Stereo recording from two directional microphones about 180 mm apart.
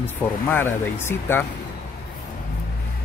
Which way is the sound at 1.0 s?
10° left (ahead or behind).